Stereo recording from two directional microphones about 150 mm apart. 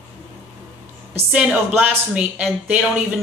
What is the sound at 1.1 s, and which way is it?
Speech, 10° right (ahead or behind).